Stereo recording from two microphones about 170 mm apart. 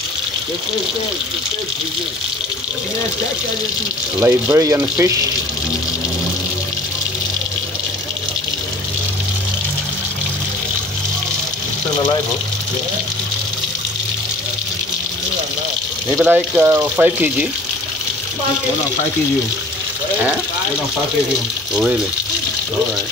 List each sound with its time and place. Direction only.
4.2 s speech: 15° right (ahead or behind)
16.1 s speech: 10° right (ahead or behind)